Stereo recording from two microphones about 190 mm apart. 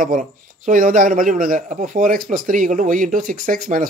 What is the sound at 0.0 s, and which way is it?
Speech, 45° right (ahead or behind).